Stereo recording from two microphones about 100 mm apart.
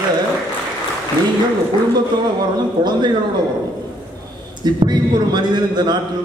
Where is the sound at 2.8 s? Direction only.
50° right (ahead or behind).